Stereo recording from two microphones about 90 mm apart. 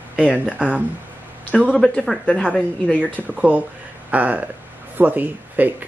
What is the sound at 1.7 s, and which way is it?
Speech, 5° left (ahead or behind).